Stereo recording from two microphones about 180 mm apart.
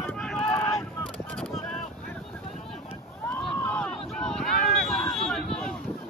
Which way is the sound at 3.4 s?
5° left (ahead or behind).